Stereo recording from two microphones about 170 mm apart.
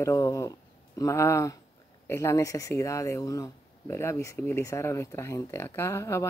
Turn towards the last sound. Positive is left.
turn(degrees=15)  # may be behind; listen again after turning